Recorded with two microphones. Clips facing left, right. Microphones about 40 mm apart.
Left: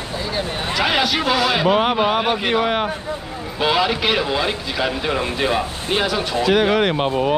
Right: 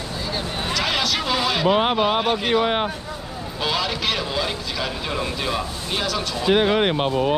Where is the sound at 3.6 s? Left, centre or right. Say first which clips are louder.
Left 6 dB; centre.